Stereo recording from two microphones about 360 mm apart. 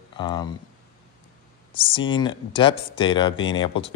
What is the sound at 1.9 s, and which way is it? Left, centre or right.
Speech, centre.